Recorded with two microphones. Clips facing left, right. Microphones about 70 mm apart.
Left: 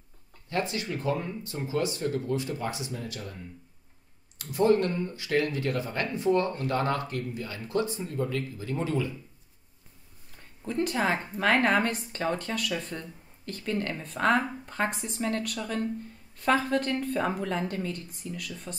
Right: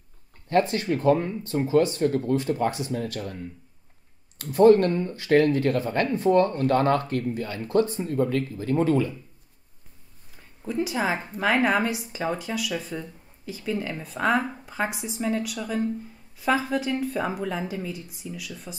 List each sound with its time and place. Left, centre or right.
0.5 s speech: right
4.4 s speech: right
10.3 s a woman's voice: centre